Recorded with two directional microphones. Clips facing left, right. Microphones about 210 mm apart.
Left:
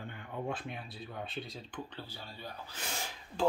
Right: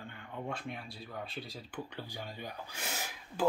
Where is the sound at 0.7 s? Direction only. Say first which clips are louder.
Even; centre (ahead or behind).